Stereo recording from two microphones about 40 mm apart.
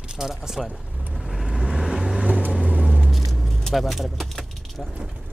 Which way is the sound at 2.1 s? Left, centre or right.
Right.